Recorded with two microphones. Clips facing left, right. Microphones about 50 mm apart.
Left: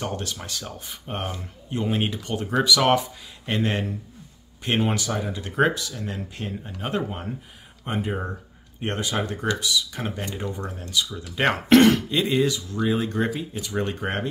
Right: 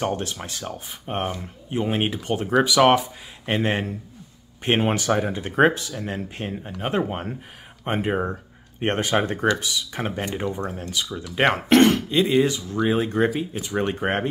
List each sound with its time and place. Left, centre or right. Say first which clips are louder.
0.0 s speech: right 4 dB; right
4.6 s speech: right 3 dB; right
5.0 s speech: right 6 dB; right
5.3 s speech: right 1 dB; right
7.0 s speech: right 4 dB; right
11.7 s speech: left 2 dB; centre
12.4 s speech: right 3 dB; right